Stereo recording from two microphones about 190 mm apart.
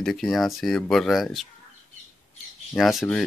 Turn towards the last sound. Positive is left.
turn(degrees=0)  # may be behind; listen again after turning